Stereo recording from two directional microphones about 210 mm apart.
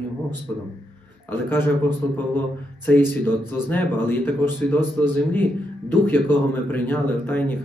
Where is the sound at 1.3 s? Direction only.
10° left (ahead or behind).